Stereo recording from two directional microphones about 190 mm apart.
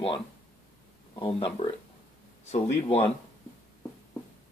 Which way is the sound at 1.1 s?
30° left (ahead or behind).